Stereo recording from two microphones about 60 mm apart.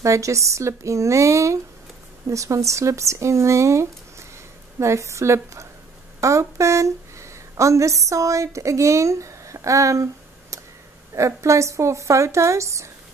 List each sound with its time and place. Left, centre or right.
0.0 s a woman's voice: right
10.5 s a sound: right
11.1 s speech: right